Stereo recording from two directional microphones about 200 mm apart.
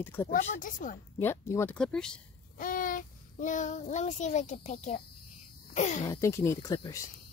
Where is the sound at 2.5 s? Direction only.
45° left (ahead or behind).